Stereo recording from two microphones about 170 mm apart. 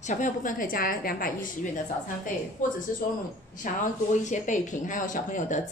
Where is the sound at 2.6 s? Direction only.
50° left (ahead or behind).